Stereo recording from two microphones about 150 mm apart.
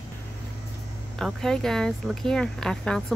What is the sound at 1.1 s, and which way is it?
Speech, 5° left (ahead or behind).